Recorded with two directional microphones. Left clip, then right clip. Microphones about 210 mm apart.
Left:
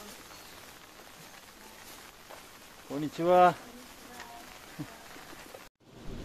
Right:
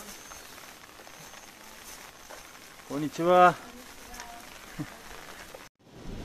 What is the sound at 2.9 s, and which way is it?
Speech, 10° right (ahead or behind).